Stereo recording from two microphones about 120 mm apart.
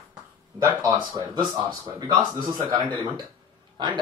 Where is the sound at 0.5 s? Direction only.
25° right (ahead or behind).